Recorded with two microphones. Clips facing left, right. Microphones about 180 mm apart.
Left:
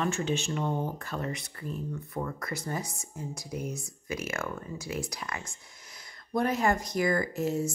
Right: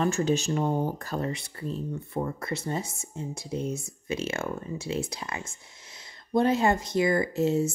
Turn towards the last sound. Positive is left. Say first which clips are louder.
# right 5 dB
turn(degrees=-25)  # may be behind; listen again after turning